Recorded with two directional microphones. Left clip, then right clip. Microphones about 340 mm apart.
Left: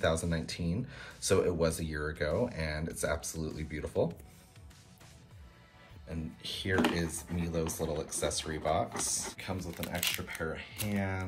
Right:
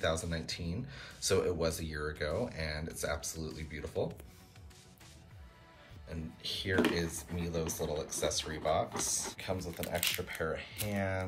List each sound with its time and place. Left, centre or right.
0.0 s speech: centre
6.0 s speech: centre